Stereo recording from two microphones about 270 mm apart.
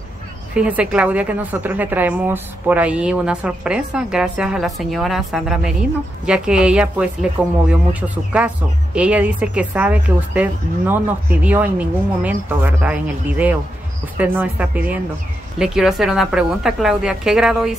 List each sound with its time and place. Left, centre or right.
0.6 s a woman's voice: centre